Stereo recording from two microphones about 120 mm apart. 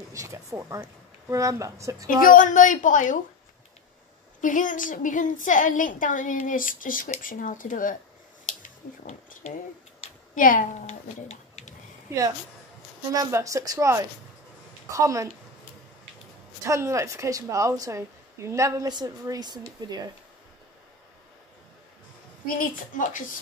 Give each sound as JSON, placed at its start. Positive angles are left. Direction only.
{"t": 0.1, "sound": "a woman's voice", "side_deg": -25}
{"t": 2.3, "sound": "a woman's voice", "side_deg": 90}
{"t": 4.4, "sound": "a woman's voice", "side_deg": 90}
{"t": 8.6, "sound": "a sound", "side_deg": 85}
{"t": 10.3, "sound": "speech", "side_deg": 90}
{"t": 13.1, "sound": "a woman's voice", "side_deg": -30}
{"t": 16.6, "sound": "a woman's voice", "side_deg": -25}
{"t": 22.5, "sound": "a woman's voice", "side_deg": 90}